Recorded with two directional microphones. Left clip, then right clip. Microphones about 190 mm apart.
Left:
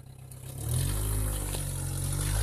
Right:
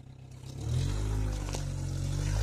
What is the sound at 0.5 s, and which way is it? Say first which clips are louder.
Vehicle: left 2 dB; 45° left (ahead or behind).